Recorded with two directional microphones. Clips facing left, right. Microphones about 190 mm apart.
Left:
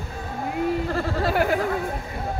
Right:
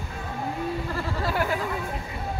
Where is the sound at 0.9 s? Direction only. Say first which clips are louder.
Left 5 dB; 55° left (ahead or behind).